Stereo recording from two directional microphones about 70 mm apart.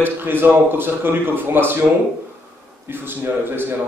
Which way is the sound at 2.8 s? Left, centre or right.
Right.